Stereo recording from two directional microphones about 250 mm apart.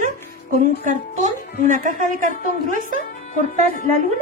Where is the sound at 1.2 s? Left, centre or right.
Right.